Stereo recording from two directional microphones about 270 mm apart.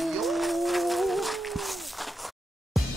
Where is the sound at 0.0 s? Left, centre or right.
Centre.